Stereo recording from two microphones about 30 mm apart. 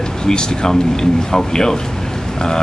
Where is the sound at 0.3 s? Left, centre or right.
Left.